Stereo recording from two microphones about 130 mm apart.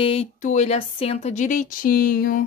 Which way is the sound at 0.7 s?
50° left (ahead or behind).